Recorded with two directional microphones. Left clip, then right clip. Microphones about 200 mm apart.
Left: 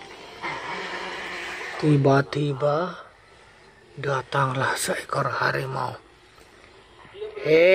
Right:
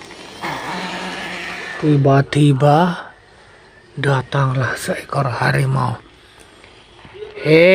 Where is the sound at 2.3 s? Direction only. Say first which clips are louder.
Right 10 dB; 20° right (ahead or behind).